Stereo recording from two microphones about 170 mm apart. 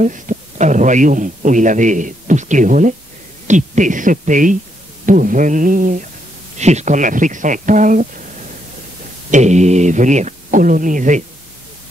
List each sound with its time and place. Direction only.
0.0 s a man's voice: 50° right (ahead or behind)
9.3 s a man's voice: 45° right (ahead or behind)